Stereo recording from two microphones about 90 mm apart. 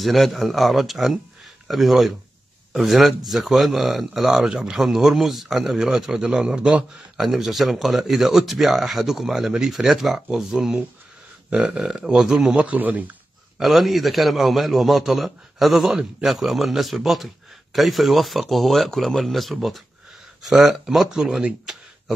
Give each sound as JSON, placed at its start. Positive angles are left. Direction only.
{"t": 0.0, "sound": "a man's voice", "side_deg": 0}
{"t": 12.6, "sound": "speech", "side_deg": -20}
{"t": 13.6, "sound": "a man's voice", "side_deg": 0}